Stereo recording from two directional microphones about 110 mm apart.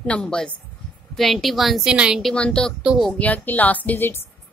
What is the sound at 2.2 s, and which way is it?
Speech, 5° left (ahead or behind).